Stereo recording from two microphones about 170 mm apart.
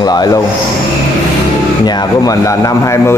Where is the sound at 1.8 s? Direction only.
25° left (ahead or behind).